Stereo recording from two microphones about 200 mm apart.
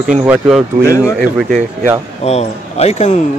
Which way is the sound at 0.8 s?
15° left (ahead or behind).